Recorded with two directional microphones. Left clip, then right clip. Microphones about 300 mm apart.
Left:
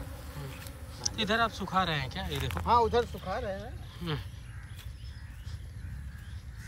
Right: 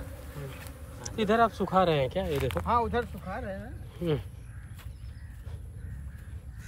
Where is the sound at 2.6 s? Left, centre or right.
Left.